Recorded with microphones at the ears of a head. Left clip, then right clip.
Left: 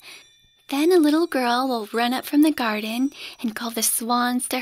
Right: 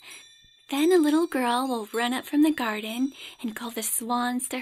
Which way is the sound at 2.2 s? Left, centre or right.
Left.